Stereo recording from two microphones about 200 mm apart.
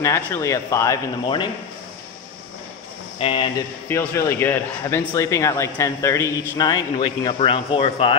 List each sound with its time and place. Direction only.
0.0 s a man's voice: 15° left (ahead or behind)
3.2 s speech: 25° left (ahead or behind)
3.9 s a man's voice: 10° left (ahead or behind)